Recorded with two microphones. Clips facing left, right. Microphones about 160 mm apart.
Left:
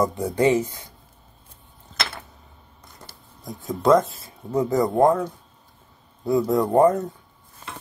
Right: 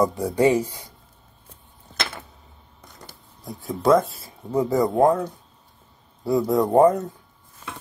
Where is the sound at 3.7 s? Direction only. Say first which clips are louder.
Even; 5° right (ahead or behind).